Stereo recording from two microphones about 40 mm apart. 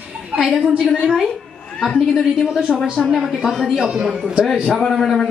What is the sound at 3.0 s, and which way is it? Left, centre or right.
Speech, right.